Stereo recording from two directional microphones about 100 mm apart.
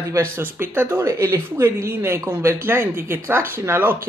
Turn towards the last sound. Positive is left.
turn(degrees=-25)  # may be behind; listen again after turning